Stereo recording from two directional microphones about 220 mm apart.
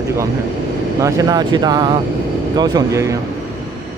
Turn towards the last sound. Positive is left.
turn(degrees=-15)  # may be behind; listen again after turning